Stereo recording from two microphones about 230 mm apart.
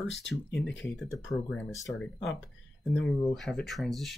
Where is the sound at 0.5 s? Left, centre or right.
Left.